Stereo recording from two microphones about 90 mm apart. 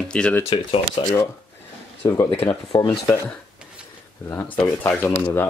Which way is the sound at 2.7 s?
60° left (ahead or behind).